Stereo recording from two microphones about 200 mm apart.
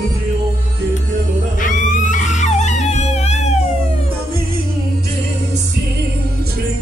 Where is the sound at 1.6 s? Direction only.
40° left (ahead or behind).